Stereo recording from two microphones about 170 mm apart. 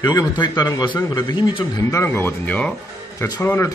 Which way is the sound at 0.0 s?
20° left (ahead or behind).